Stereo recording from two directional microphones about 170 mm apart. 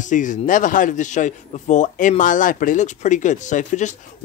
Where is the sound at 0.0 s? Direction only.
50° left (ahead or behind).